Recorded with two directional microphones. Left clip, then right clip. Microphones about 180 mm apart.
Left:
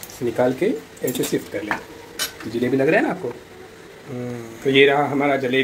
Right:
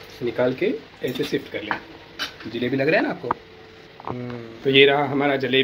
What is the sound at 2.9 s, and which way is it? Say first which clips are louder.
Speech: even; 5° right (ahead or behind).